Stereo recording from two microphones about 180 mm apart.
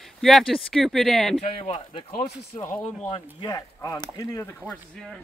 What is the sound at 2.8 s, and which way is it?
Speech, 30° left (ahead or behind).